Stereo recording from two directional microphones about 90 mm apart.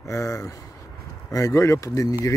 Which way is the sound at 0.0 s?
35° left (ahead or behind).